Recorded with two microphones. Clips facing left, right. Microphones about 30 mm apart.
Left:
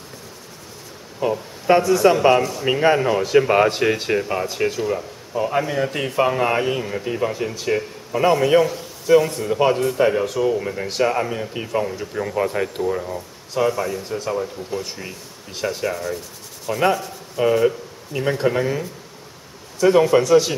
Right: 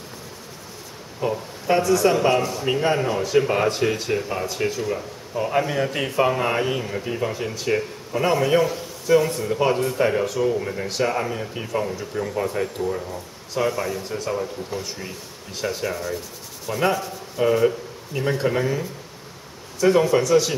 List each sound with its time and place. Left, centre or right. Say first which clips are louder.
1.2 s speech: left 4 dB; centre
13.6 s speech: left 3 dB; centre